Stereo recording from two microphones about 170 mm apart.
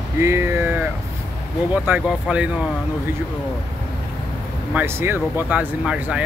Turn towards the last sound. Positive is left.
turn(degrees=-5)  # may be behind; listen again after turning